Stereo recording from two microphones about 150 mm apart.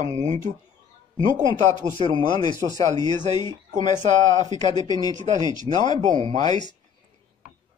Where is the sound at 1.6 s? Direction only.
50° right (ahead or behind).